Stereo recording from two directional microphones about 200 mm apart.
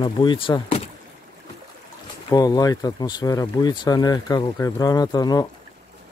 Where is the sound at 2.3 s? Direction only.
20° left (ahead or behind).